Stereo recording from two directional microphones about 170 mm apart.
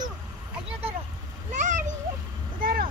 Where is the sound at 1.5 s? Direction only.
45° right (ahead or behind).